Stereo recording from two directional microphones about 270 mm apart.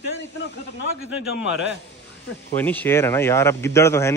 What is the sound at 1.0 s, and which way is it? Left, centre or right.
Speech, left.